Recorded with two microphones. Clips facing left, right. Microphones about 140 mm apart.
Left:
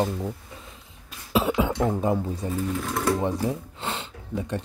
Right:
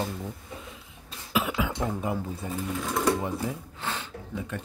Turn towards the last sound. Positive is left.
turn(degrees=25)  # may be behind; listen again after turning